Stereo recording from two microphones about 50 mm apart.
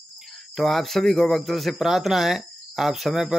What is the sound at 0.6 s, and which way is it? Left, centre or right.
Speech, centre.